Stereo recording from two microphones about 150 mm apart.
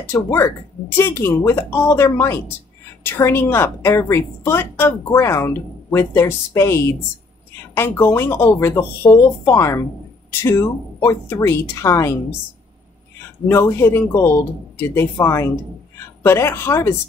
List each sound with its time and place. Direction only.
0.0 s a woman's voice: 20° left (ahead or behind)
13.5 s a woman's voice: 20° left (ahead or behind)